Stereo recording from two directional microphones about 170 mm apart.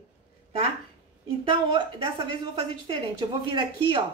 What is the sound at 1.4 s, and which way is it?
A woman's voice, 30° right (ahead or behind).